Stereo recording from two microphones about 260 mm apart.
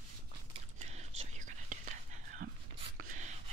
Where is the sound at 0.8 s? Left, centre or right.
Right.